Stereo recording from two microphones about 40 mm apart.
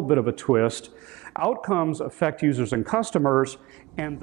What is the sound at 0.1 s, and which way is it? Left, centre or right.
Speech, centre.